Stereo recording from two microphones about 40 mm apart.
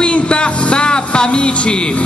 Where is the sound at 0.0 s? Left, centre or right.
Left.